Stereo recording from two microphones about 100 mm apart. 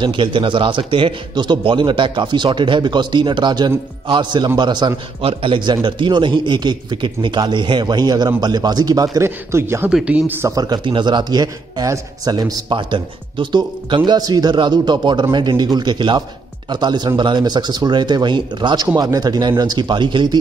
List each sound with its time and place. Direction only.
0.0 s a man's voice: 55° right (ahead or behind)
5.2 s a man's voice: 60° right (ahead or behind); by 9.8 s 25° right (ahead or behind)
9.8 s speech: 10° right (ahead or behind)
10.4 s a man's voice: 40° right (ahead or behind)
10.9 s a man's voice: 50° right (ahead or behind)
12.6 s a man's voice: 55° right (ahead or behind)
18.9 s a man's voice: 40° right (ahead or behind)